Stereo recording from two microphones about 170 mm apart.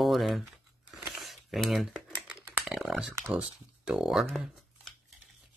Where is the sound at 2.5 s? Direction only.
Centre (ahead or behind).